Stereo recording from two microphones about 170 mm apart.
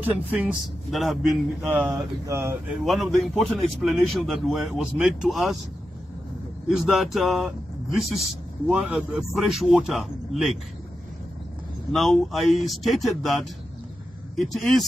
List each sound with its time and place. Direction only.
0.0 s a man's voice: 10° right (ahead or behind)
1.7 s speech: 15° right (ahead or behind)
2.8 s a man's voice: centre (ahead or behind)
6.7 s a man's voice: centre (ahead or behind)
11.9 s a man's voice: centre (ahead or behind)